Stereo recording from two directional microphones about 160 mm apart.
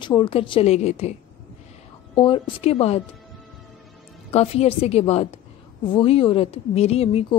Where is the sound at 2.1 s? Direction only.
30° left (ahead or behind).